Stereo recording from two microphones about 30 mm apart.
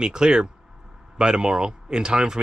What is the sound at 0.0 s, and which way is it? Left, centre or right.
Speech, right.